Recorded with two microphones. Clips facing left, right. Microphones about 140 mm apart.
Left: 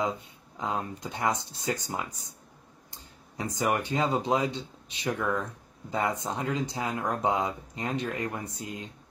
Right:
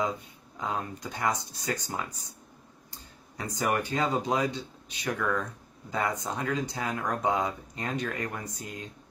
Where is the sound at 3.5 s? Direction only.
20° left (ahead or behind).